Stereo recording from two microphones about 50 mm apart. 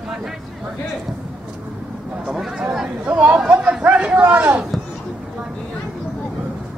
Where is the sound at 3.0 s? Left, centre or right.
Right.